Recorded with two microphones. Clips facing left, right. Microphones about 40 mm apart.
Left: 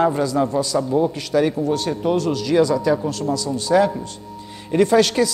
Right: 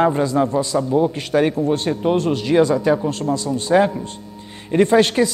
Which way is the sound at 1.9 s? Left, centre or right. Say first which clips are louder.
Right 2 dB; right.